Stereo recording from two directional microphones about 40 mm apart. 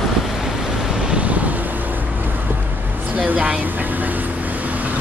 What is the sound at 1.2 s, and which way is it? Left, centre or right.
Vehicle, right.